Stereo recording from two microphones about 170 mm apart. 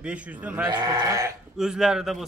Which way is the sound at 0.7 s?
25° right (ahead or behind).